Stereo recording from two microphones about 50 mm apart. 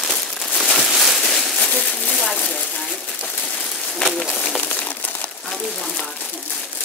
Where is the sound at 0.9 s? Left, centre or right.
Centre.